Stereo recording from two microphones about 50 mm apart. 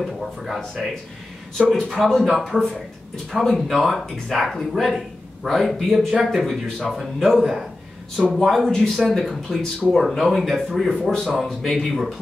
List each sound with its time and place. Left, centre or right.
0.0 s speech: centre
1.7 s speech: centre
10.9 s speech: centre